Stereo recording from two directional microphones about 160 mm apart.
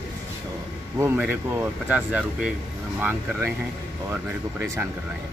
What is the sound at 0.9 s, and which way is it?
Speech, 10° right (ahead or behind).